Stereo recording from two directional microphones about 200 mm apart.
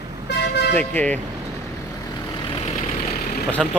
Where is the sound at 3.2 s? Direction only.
50° left (ahead or behind).